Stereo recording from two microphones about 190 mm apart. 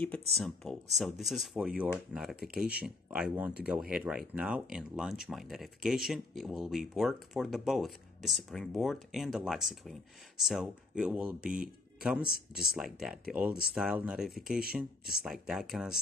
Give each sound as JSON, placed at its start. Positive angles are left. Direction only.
{"t": 0.0, "sound": "speech", "side_deg": 5}